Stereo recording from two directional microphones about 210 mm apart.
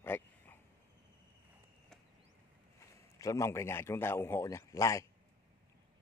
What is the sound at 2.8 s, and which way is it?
A man's voice, 15° left (ahead or behind).